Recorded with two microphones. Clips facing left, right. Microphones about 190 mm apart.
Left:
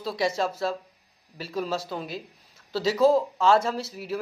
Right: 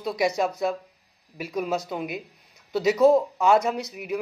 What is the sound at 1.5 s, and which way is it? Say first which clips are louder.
Speech: right 2 dB; centre (ahead or behind).